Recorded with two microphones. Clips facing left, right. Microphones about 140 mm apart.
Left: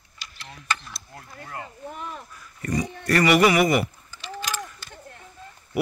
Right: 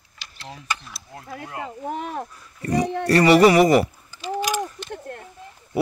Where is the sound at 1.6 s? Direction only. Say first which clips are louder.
Right 7 dB; 90° right; by 2.3 s 75° right (ahead or behind).